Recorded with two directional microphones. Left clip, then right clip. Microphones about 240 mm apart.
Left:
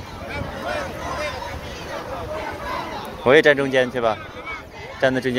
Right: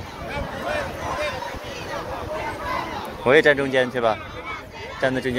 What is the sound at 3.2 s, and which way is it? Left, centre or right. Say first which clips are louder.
Speech: left 2 dB; centre.